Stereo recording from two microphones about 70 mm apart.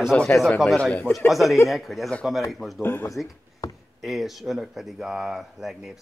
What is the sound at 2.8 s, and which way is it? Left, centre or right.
Speech, left.